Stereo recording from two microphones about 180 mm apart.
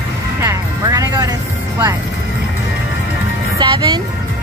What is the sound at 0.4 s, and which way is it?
Music, 20° right (ahead or behind).